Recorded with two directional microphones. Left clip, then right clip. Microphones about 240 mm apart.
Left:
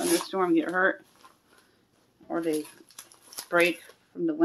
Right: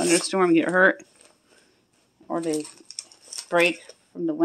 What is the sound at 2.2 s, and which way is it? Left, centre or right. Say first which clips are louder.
Speech: right 2 dB; right.